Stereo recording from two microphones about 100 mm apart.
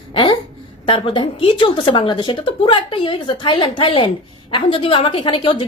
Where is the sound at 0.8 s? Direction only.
60° left (ahead or behind).